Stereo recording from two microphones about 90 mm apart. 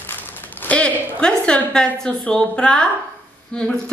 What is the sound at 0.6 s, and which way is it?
A woman's voice, 15° left (ahead or behind).